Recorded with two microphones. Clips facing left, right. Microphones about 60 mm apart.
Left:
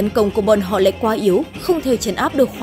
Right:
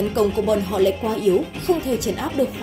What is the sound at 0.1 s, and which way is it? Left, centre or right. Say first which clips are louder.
A woman's voice: left 6 dB; left.